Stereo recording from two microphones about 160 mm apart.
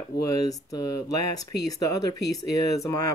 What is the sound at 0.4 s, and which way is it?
Speech, 20° left (ahead or behind).